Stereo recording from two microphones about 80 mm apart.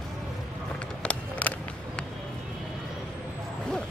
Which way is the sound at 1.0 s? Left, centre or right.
Centre.